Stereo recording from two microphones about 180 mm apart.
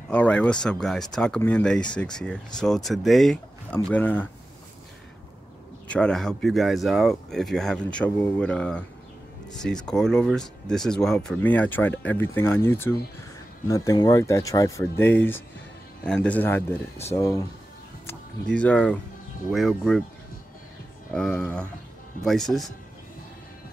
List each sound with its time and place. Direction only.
0.1 s speech: 5° left (ahead or behind)
5.9 s speech: 5° left (ahead or behind)
21.1 s speech: 5° left (ahead or behind)